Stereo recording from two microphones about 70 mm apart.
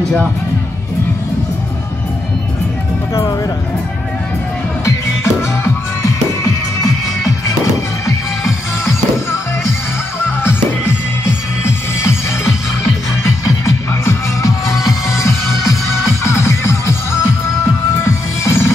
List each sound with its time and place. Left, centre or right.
4.8 s music: left
6.4 s music: left
8.5 s music: left
13.7 s music: left
18.0 s music: left